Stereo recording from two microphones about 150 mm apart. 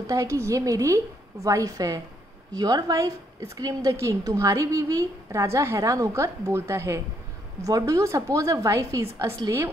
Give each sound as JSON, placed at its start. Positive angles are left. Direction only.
{"t": 0.0, "sound": "a woman's voice", "side_deg": -25}